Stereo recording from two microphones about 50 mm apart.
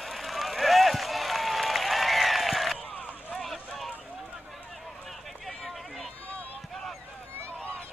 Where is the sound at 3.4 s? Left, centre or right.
Centre.